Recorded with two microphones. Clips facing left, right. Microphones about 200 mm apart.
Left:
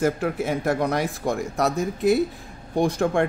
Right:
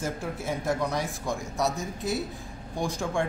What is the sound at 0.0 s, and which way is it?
Speech, 65° left (ahead or behind).